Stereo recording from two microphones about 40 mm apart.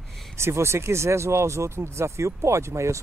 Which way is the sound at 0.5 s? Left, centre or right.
Right.